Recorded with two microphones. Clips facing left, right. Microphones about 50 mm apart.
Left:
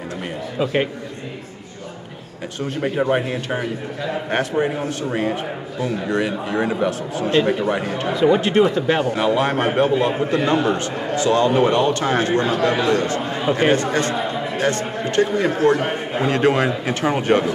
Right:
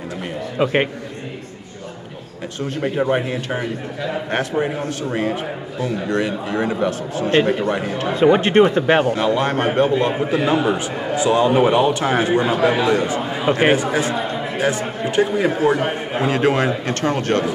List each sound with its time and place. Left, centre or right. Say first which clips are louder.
0.6 s a man's voice: right 3 dB; right
2.6 s a man's voice: even; centre
8.1 s speech: right 2 dB; right
9.1 s a man's voice: even; centre